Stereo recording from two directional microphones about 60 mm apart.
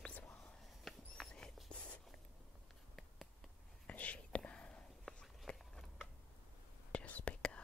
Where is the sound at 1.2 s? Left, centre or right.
Centre.